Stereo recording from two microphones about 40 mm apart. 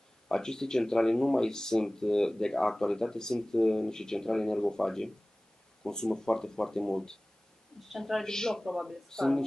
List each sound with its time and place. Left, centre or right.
0.3 s speech: centre
8.6 s speech: centre
9.1 s speech: centre